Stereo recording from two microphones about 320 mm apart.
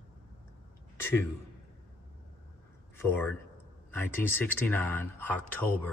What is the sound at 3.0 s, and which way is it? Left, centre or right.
A man's voice, centre.